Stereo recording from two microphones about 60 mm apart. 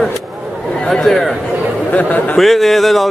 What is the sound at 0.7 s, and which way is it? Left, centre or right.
Speech, centre.